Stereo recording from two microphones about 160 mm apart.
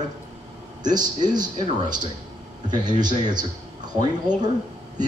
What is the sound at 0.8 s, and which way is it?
Speech, 25° right (ahead or behind).